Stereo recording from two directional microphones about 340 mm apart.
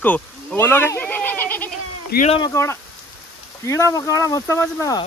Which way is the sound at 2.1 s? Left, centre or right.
Centre.